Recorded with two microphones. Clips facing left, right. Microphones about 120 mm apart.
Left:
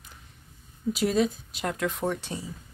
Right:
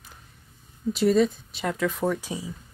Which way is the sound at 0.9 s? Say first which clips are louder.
Right 5 dB; centre (ahead or behind).